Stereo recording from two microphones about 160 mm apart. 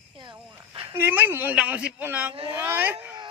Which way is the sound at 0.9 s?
15° right (ahead or behind).